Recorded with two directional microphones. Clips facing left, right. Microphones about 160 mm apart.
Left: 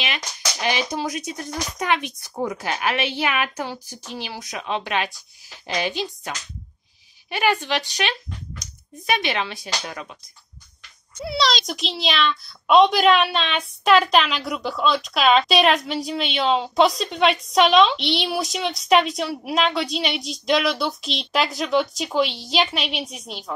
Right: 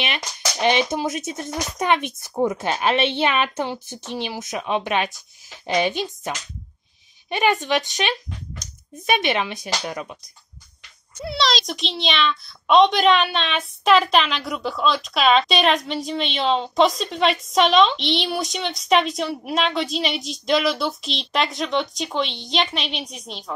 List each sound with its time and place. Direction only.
0.0 s speech: 25° right (ahead or behind)
11.2 s a child's voice: centre (ahead or behind)